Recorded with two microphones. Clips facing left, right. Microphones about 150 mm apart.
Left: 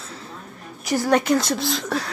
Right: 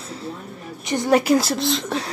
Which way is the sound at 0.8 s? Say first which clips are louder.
Right 1 dB; 5° left (ahead or behind).